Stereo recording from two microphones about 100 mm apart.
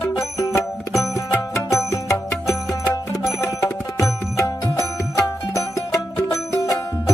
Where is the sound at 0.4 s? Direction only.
35° left (ahead or behind).